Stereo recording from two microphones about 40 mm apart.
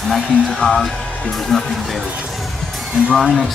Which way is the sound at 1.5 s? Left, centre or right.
Centre.